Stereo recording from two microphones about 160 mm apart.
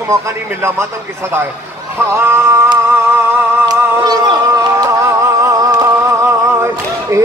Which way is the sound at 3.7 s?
25° right (ahead or behind).